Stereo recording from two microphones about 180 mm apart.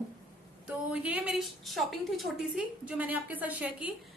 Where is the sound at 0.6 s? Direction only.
5° right (ahead or behind).